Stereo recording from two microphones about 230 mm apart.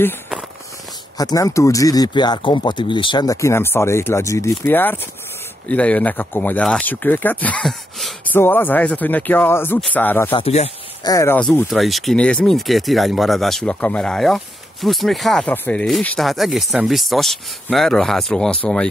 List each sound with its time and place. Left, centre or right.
1.1 s speech: centre
10.3 s speech: left
11.1 s speech: centre